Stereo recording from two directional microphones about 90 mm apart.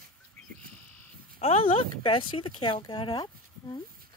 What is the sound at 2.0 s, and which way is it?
Speech, 70° left (ahead or behind).